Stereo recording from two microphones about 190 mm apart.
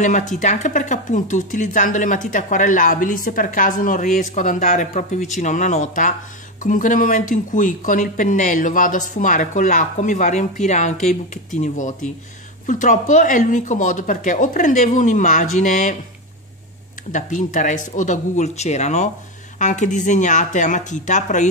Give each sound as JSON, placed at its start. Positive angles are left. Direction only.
{"t": 0.4, "sound": "speech", "side_deg": 40}
{"t": 17.1, "sound": "speech", "side_deg": 40}